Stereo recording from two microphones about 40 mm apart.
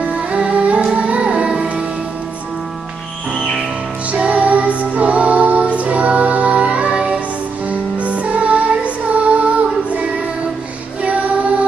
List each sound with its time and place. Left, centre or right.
0.3 s music: right
4.1 s music: right
7.7 s music: right
11.0 s female singing: right